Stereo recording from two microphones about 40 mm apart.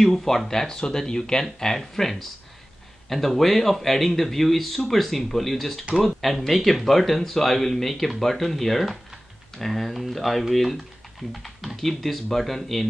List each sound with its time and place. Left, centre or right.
0.0 s speech: centre